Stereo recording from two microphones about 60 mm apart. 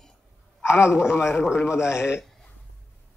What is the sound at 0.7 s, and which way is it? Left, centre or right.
Speech, left.